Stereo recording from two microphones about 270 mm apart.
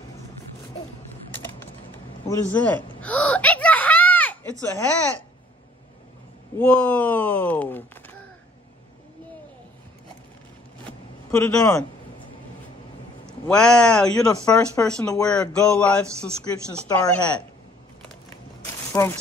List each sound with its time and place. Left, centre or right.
1.3 s a sound: centre
2.2 s gasp: centre
6.6 s speech: centre
10.9 s a sound: centre
13.3 s speech: centre
18.6 s walk: centre